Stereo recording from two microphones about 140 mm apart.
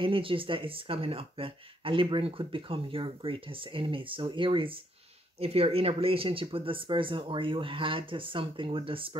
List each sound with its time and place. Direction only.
0.0 s speech: 40° right (ahead or behind)